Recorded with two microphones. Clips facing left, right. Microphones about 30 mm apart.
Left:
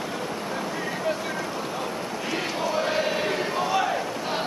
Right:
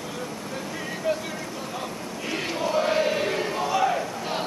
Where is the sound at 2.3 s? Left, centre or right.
Centre.